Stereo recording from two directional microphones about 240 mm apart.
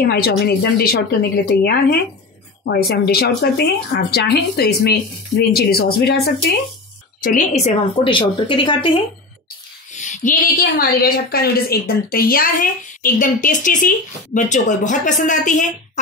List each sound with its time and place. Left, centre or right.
0.0 s a woman's voice: left
7.3 s a woman's voice: left
9.9 s a woman's voice: left